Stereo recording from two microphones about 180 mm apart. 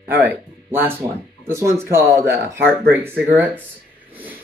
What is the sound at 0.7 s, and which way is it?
Speech, 10° right (ahead or behind).